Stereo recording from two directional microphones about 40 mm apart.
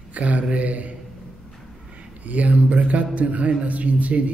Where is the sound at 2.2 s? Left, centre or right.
Right.